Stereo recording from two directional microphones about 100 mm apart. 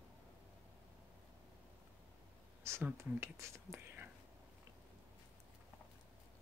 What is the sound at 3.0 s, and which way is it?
Speech, 25° right (ahead or behind).